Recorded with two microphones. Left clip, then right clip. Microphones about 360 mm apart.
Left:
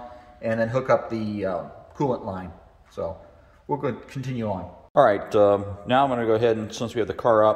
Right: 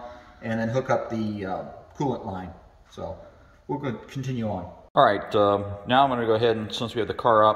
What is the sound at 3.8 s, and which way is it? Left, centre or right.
Speech, centre.